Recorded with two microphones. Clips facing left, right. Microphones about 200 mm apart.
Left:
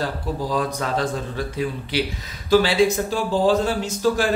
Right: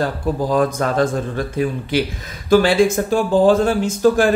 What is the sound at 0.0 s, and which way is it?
Speech, 50° right (ahead or behind).